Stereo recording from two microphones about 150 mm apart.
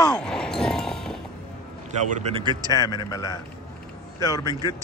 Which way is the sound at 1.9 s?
50° right (ahead or behind).